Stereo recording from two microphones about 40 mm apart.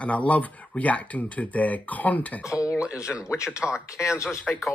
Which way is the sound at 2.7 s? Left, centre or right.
Right.